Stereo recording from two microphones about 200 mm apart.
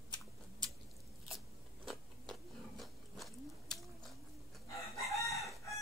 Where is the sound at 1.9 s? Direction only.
Centre (ahead or behind).